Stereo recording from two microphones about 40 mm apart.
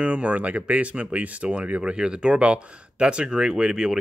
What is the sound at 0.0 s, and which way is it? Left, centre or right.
Speech, right.